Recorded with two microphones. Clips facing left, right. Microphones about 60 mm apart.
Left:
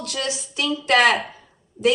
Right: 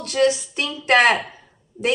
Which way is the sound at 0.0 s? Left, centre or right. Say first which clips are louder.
Right 9 dB; right.